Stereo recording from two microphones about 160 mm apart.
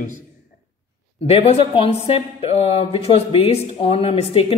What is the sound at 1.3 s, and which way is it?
Speech, 40° left (ahead or behind).